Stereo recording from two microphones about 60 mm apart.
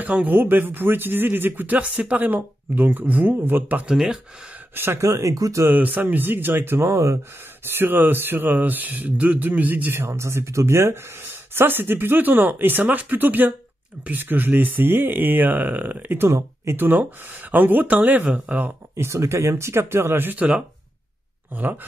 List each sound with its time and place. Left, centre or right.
0.0 s speech: right
3.9 s speech: centre
4.7 s speech: right
5.0 s speech: right
5.7 s speech: right
7.7 s speech: right
9.9 s speech: right
18.9 s speech: right
20.3 s speech: centre
21.5 s speech: right